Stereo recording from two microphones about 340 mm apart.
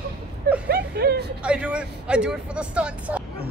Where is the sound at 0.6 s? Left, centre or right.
Right.